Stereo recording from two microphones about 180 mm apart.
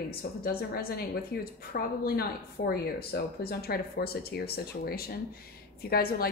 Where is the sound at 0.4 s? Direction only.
55° left (ahead or behind).